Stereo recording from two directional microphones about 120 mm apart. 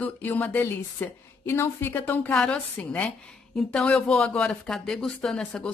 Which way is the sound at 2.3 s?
5° left (ahead or behind).